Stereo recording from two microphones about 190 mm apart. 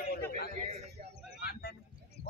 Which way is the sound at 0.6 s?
40° right (ahead or behind).